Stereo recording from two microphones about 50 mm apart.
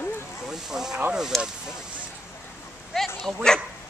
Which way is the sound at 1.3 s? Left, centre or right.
Centre.